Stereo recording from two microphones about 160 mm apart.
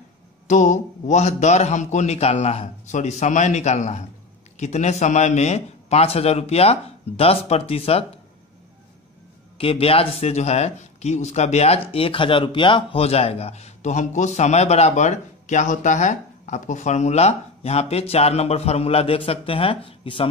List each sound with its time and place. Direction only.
0.5 s a man's voice: 50° left (ahead or behind)
9.6 s speech: 35° left (ahead or behind)